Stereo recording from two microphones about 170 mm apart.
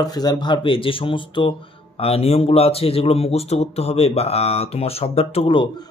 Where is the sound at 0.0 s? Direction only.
25° left (ahead or behind).